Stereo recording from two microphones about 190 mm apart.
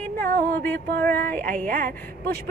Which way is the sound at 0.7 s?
50° right (ahead or behind).